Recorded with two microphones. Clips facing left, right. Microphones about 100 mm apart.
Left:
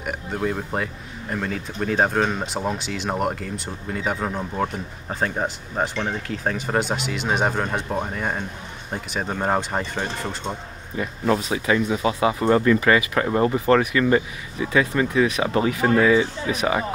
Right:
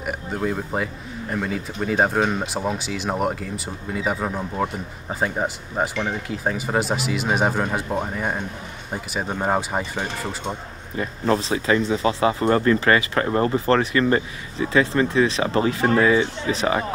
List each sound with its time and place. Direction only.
0.0 s speech: centre (ahead or behind)
11.0 s speech: 35° right (ahead or behind)
12.4 s speech: 45° right (ahead or behind)